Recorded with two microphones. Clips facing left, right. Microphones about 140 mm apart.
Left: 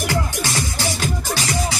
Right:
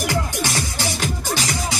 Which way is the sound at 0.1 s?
15° right (ahead or behind).